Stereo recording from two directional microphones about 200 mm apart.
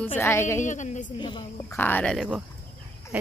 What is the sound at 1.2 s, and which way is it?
Speech, 20° left (ahead or behind).